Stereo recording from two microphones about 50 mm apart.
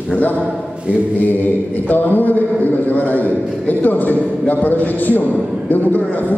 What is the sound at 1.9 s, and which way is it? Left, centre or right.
A man's voice, left.